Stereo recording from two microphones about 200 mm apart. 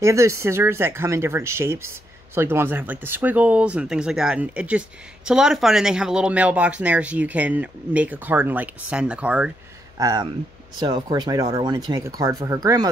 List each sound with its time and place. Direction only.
0.0 s speech: 15° right (ahead or behind)
9.9 s speech: 15° right (ahead or behind)